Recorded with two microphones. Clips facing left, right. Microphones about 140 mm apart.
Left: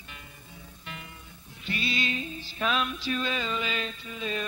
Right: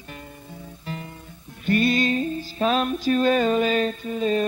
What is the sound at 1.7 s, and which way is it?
Music, 50° right (ahead or behind).